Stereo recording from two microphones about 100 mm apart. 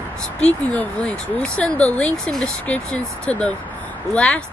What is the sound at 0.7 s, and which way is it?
Speech, 10° left (ahead or behind).